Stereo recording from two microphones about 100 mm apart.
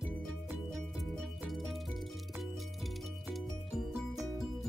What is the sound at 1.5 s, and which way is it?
Music, centre (ahead or behind).